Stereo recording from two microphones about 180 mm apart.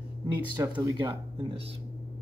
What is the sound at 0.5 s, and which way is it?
A man's voice, 20° right (ahead or behind).